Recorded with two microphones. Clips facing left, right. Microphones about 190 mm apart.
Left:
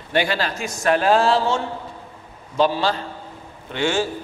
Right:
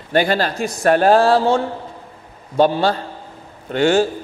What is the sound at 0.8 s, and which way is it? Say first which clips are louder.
Speech: right 4 dB; 50° right (ahead or behind).